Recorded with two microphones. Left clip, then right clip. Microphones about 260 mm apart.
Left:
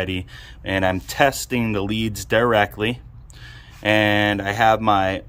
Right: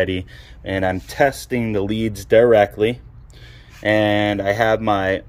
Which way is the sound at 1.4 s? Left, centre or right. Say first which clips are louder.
Right 1 dB; left.